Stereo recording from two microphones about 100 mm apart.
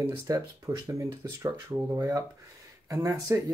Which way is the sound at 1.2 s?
35° right (ahead or behind).